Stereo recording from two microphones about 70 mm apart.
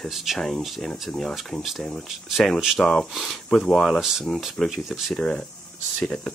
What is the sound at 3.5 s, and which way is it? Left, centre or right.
Speech, centre.